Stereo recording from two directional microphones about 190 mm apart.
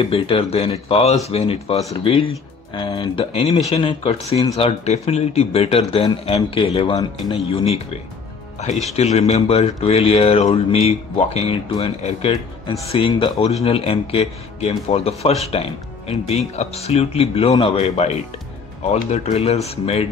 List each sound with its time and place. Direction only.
0.0 s speech: 30° left (ahead or behind)